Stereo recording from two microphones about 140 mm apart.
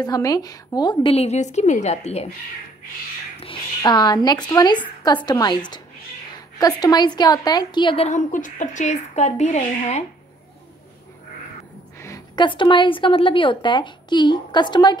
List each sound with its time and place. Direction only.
0.0 s a woman's voice: 25° left (ahead or behind)
1.1 s a woman's voice: 50° left (ahead or behind)
3.3 s speech: 35° left (ahead or behind)
8.1 s a woman's voice: 65° left (ahead or behind)
12.4 s speech: 35° left (ahead or behind)